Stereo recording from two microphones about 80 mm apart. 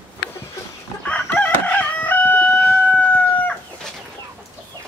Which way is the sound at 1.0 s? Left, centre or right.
Centre.